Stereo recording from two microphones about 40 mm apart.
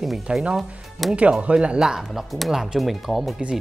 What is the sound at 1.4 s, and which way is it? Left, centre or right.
Speech, right.